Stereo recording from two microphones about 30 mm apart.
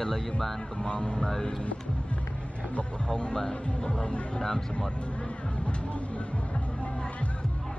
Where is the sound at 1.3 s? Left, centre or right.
Centre.